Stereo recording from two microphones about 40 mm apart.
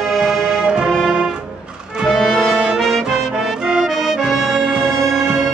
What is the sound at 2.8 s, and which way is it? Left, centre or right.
Music, centre.